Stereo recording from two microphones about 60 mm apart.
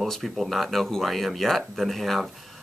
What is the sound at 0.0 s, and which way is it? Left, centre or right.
Speech, centre.